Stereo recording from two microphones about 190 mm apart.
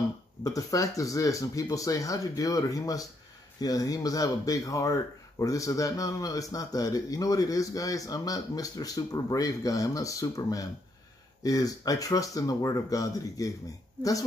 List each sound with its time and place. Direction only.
0.4 s speech: 20° left (ahead or behind)